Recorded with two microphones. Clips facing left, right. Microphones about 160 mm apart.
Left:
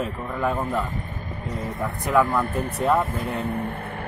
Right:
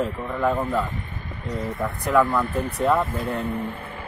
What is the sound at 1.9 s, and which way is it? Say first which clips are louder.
Speech: right 1 dB; centre (ahead or behind).